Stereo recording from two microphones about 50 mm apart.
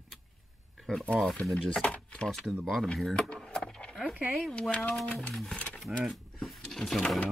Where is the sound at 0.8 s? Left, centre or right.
Centre.